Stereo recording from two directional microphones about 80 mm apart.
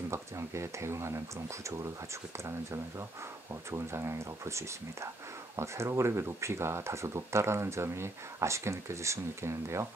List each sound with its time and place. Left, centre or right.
0.1 s speech: right
3.7 s speech: right